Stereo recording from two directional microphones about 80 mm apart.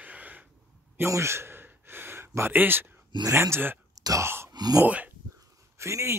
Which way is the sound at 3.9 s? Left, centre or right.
Right.